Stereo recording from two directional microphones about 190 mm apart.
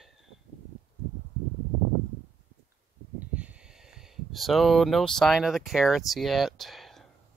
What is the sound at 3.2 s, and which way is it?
Speech, 5° right (ahead or behind).